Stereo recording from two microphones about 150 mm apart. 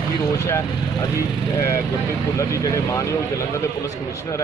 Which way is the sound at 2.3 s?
20° left (ahead or behind).